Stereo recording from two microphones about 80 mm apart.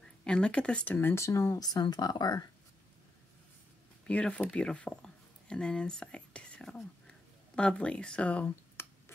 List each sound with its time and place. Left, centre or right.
0.0 s speech: centre; by 2.4 s left
4.1 s speech: centre
8.8 s a sound: left